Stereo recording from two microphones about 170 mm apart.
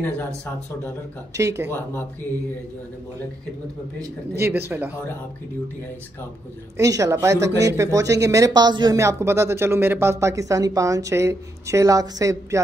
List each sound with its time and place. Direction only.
1.3 s a woman's voice: 15° right (ahead or behind)
4.4 s a woman's voice: 15° right (ahead or behind)
6.8 s a woman's voice: 20° right (ahead or behind)